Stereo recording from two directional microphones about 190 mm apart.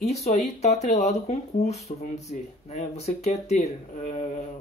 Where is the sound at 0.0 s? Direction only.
35° left (ahead or behind).